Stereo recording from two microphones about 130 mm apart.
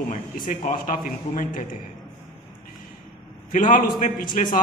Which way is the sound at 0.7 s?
85° left.